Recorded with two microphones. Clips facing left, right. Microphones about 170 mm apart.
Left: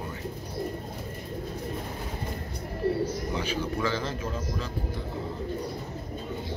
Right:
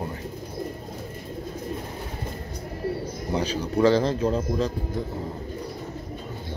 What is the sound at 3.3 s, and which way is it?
A man's voice, 40° right (ahead or behind).